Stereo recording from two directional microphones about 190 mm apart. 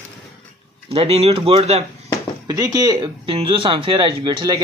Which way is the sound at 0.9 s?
30° right (ahead or behind).